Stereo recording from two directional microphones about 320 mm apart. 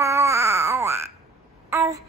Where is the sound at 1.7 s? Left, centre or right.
Centre.